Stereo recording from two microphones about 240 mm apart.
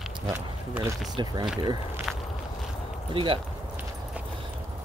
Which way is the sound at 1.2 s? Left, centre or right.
Centre.